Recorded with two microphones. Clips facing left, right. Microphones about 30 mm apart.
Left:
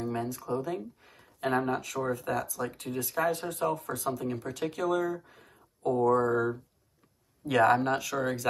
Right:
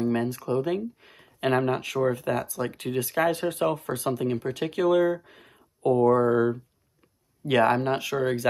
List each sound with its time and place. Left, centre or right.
0.0 s speech: right
4.3 s speech: right
6.1 s speech: right
7.4 s speech: right